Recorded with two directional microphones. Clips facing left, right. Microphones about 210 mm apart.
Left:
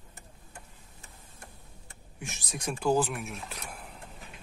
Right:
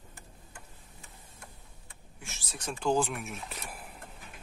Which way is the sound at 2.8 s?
5° left (ahead or behind).